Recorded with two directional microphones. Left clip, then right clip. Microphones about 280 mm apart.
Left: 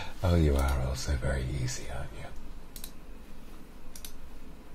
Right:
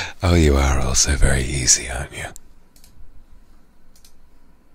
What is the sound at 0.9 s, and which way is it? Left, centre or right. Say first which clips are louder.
Speech: right 15 dB; right.